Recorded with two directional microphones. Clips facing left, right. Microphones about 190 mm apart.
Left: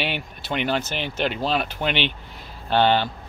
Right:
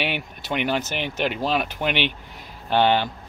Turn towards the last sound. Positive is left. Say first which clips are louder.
# even
turn(degrees=-15)  # may be behind; listen again after turning